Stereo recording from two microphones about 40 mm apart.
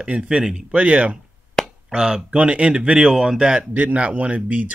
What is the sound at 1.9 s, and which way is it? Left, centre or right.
Speech, centre.